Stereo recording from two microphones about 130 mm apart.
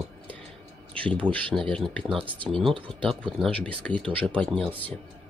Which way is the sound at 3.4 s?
10° left (ahead or behind).